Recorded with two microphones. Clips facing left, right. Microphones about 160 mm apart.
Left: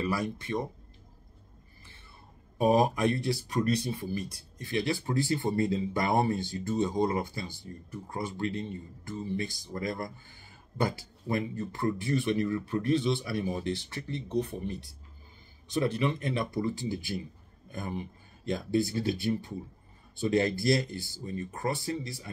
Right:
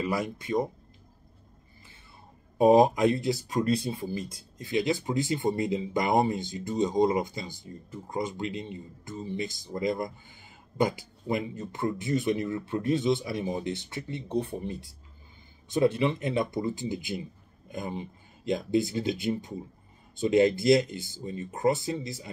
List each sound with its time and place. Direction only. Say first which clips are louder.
0.0 s speech: right 1 dB; 20° right (ahead or behind)
2.5 s speech: right 5 dB; 25° right (ahead or behind)